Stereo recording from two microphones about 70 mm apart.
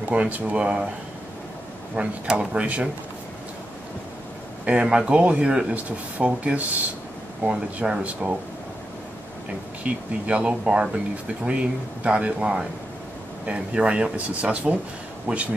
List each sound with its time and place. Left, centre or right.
0.0 s speech: right
2.0 s speech: centre
4.6 s speech: centre
9.8 s speech: centre